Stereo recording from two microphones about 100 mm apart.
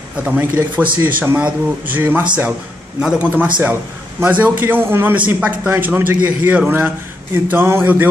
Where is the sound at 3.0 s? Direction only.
10° right (ahead or behind).